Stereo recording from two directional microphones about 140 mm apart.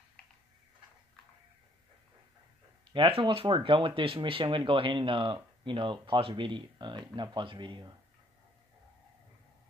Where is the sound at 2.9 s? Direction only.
40° right (ahead or behind).